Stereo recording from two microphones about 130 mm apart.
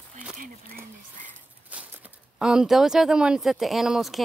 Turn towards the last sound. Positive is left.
turn(degrees=0)  # may be behind; listen again after turning